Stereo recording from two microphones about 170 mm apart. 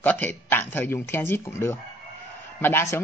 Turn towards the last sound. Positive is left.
turn(degrees=15)  # may be behind; listen again after turning